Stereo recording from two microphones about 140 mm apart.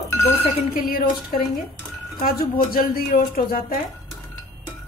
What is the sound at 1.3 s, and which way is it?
Speech, 90° left.